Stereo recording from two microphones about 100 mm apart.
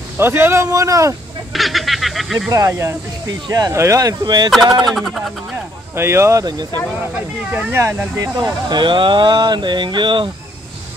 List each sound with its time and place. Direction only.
0.2 s speech: 25° right (ahead or behind)
1.5 s a sound: centre (ahead or behind)
2.7 s speech: 25° right (ahead or behind)
3.3 s speech: 40° right (ahead or behind)
4.9 s speech: centre (ahead or behind)
5.9 s speech: 25° right (ahead or behind)
6.4 s speech: 45° right (ahead or behind)
7.7 s speech: 25° right (ahead or behind)
8.2 s speech: 40° right (ahead or behind)